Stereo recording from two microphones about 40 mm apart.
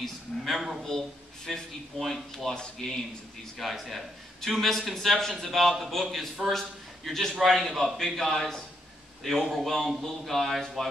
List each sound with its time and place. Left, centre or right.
0.0 s a woman's voice: centre
2.5 s speech: left
3.5 s a man's voice: centre